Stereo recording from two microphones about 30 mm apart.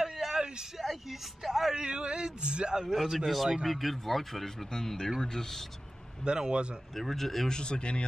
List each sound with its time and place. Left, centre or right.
0.0 s a sound: centre
1.4 s speech: centre
1.8 s speech: right
2.9 s speech: centre
3.6 s speech: centre
4.7 s speech: centre
6.2 s speech: right
7.0 s speech: centre
7.4 s speech: left